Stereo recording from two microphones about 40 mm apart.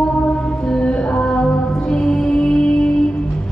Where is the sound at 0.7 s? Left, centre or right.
Left.